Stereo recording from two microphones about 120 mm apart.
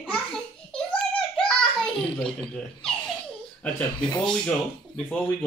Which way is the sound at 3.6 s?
10° left (ahead or behind).